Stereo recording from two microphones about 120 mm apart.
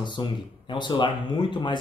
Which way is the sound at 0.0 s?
40° left (ahead or behind).